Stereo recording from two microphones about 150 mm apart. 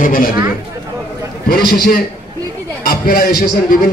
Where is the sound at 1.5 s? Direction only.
85° left.